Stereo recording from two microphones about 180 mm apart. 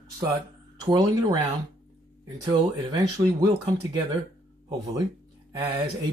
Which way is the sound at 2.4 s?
20° right (ahead or behind).